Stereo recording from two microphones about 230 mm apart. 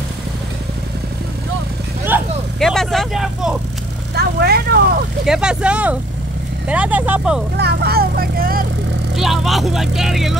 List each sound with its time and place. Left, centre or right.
2.0 s vehicle: centre
4.1 s vehicle: right
5.2 s speech: centre
7.5 s speech: right
9.1 s speech: centre